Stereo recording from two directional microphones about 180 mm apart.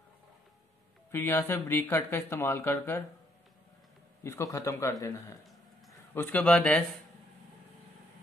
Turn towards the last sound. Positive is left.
turn(degrees=5)  # may be behind; listen again after turning